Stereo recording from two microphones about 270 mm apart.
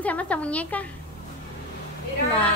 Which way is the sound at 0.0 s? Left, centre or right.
Centre.